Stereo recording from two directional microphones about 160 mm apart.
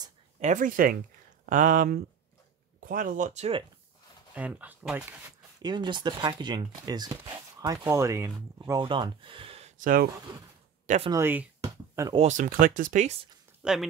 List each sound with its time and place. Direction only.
0.4 s speech: 55° right (ahead or behind)
4.3 s speech: 10° right (ahead or behind)
5.6 s speech: 30° right (ahead or behind); by 10.0 s 55° right (ahead or behind)
10.3 s speech: 30° right (ahead or behind)
11.1 s speech: 15° right (ahead or behind)
11.6 s a sound: 20° right (ahead or behind)
12.3 s speech: 55° right (ahead or behind)
13.6 s a sound: 5° right (ahead or behind)